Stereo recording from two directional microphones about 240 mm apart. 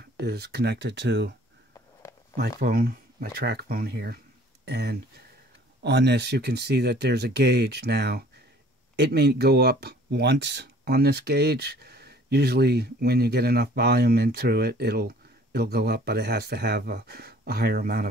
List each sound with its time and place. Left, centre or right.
0.0 s speech: right
2.6 s speech: right